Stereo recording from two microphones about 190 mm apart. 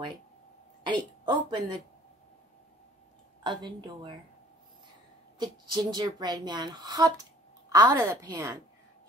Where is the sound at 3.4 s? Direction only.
25° right (ahead or behind).